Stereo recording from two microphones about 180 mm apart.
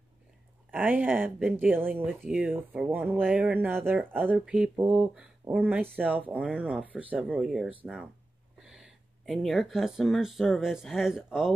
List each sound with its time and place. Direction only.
0.7 s speech: 10° right (ahead or behind)